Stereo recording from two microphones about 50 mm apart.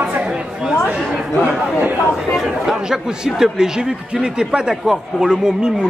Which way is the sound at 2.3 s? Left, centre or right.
Centre.